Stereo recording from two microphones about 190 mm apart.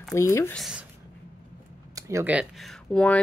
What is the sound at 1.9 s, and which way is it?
Speech, 15° right (ahead or behind).